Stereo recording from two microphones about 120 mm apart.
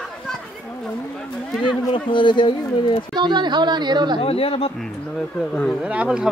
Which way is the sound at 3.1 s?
40° right (ahead or behind).